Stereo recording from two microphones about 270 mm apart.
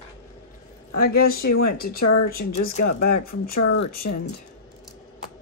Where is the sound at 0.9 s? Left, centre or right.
Left.